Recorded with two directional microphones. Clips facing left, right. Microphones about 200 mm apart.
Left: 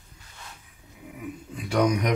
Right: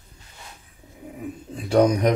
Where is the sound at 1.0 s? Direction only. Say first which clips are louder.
Right 3 dB; 35° right (ahead or behind).